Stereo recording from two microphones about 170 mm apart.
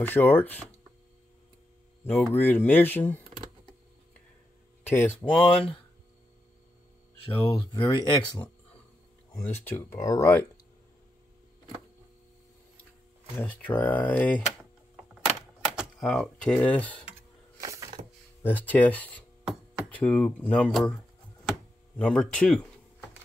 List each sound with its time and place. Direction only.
0.0 s speech: 10° left (ahead or behind)
2.2 s speech: 10° left (ahead or behind)
4.8 s speech: 10° left (ahead or behind)
7.3 s speech: 30° left (ahead or behind)
9.3 s speech: 15° left (ahead or behind)
13.4 s speech: 10° left (ahead or behind)
15.2 s typewriter: 5° right (ahead or behind)
17.6 s a sound: 20° right (ahead or behind)
18.4 s speech: 10° left (ahead or behind)
21.5 s a sound: 5° left (ahead or behind)